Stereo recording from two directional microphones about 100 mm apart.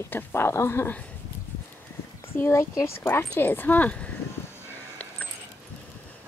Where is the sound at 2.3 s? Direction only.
25° left (ahead or behind).